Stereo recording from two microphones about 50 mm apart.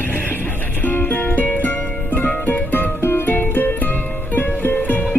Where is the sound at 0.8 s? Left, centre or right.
Left.